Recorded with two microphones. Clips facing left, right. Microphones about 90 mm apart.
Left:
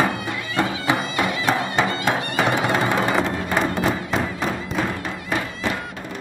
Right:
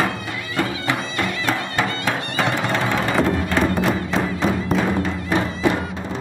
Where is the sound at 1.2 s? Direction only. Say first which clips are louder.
Left 1 dB; 15° left (ahead or behind).